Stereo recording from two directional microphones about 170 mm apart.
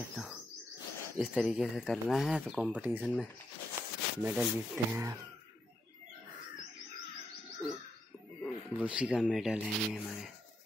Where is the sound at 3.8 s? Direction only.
15° right (ahead or behind).